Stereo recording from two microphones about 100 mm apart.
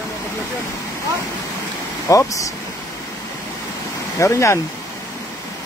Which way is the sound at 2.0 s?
35° left (ahead or behind).